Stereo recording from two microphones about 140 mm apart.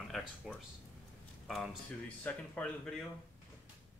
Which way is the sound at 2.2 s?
10° left (ahead or behind).